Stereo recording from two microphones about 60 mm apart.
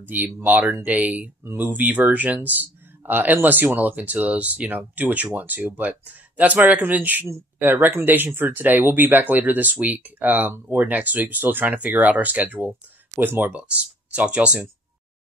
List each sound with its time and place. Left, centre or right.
0.0 s speech: right
13.6 s speech: right